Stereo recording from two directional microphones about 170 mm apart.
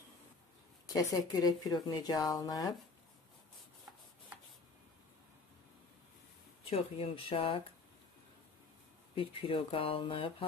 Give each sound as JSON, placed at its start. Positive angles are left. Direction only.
{"t": 0.9, "sound": "speech", "side_deg": 20}
{"t": 6.7, "sound": "speech", "side_deg": 35}
{"t": 9.1, "sound": "speech", "side_deg": 30}